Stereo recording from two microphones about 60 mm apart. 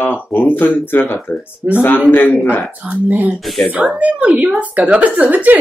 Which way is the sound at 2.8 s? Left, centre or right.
Right.